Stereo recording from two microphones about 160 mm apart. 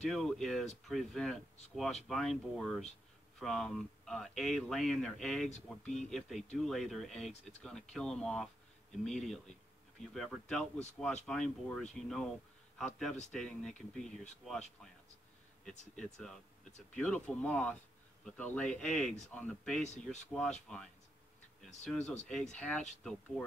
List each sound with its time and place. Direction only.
0.0 s speech: centre (ahead or behind)
16.0 s speech: centre (ahead or behind)
19.8 s speech: 45° left (ahead or behind)
20.6 s speech: 5° left (ahead or behind)
22.3 s speech: 5° left (ahead or behind)